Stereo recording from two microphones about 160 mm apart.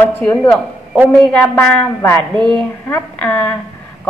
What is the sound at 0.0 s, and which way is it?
Speech, 10° left (ahead or behind).